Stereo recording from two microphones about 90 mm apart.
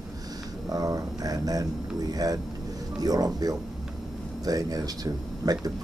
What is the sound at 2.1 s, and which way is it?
Speech, 45° right (ahead or behind).